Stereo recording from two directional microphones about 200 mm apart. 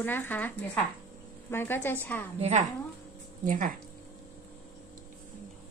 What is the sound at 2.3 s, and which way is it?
Speech, 30° right (ahead or behind).